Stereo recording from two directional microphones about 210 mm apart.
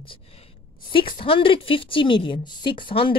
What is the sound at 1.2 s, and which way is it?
A woman's voice, 25° left (ahead or behind).